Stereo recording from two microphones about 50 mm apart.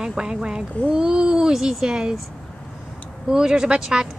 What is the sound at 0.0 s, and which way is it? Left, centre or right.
Speech, centre.